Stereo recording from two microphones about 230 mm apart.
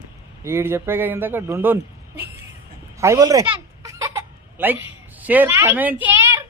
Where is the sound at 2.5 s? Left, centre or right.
Centre.